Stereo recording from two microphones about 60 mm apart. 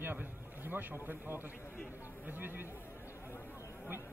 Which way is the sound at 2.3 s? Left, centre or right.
Right.